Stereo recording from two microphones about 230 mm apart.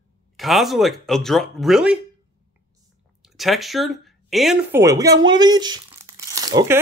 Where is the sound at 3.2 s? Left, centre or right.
Centre.